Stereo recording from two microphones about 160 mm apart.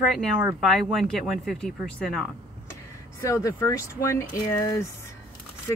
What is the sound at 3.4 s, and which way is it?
Speech, 20° left (ahead or behind).